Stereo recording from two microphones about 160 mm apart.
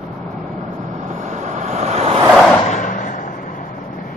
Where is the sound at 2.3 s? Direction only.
Centre (ahead or behind).